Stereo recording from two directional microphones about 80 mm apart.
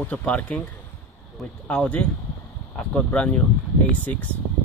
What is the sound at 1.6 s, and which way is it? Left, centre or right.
Speech, centre.